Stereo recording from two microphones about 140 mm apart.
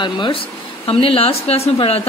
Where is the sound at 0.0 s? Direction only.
35° left (ahead or behind).